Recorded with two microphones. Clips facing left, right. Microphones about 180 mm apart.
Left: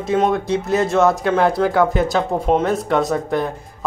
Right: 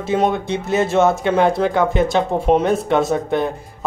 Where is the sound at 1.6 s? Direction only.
Centre (ahead or behind).